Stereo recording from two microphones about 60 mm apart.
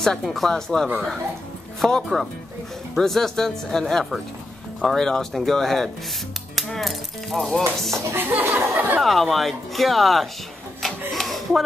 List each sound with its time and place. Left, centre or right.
0.0 s speech: centre
4.8 s speech: centre
8.2 s speech: right
9.0 s speech: centre
10.8 s a sound: centre